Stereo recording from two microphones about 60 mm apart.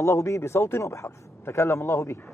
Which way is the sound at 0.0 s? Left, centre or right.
Left.